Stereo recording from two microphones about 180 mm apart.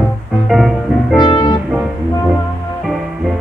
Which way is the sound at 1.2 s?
25° left (ahead or behind).